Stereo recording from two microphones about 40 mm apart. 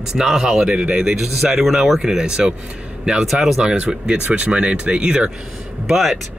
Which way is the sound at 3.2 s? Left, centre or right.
Centre.